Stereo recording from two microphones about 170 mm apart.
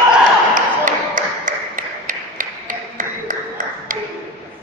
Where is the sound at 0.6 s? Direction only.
50° right (ahead or behind).